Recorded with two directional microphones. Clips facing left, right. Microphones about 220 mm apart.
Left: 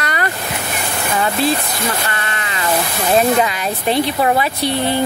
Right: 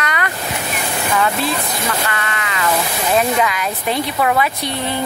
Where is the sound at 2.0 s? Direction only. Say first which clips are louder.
Right 1 dB; 30° left (ahead or behind).